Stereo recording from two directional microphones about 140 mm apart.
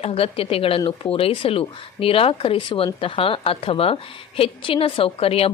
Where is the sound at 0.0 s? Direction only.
45° left (ahead or behind).